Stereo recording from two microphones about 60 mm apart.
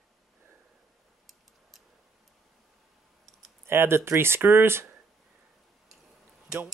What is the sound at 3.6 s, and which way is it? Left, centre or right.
Speech, right.